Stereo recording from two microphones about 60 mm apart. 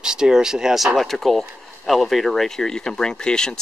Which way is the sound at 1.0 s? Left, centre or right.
Centre.